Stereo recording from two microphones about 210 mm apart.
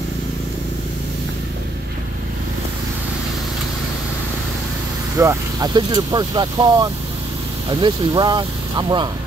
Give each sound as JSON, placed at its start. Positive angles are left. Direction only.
{"t": 5.1, "sound": "speech", "side_deg": -15}